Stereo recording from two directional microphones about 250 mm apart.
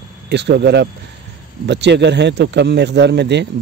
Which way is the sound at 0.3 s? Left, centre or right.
Right.